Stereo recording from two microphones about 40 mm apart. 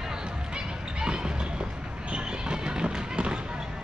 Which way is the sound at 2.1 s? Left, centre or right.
Centre.